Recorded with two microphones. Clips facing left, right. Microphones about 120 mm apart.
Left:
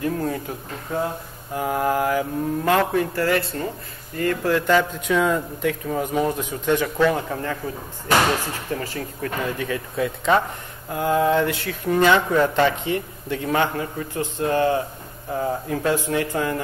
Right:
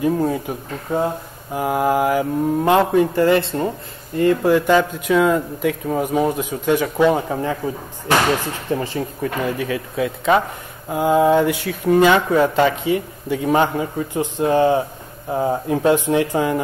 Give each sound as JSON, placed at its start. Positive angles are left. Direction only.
{"t": 0.0, "sound": "speech", "side_deg": -15}
{"t": 7.1, "sound": "speech", "side_deg": -20}
{"t": 8.7, "sound": "speech", "side_deg": -20}
{"t": 10.9, "sound": "speech", "side_deg": -15}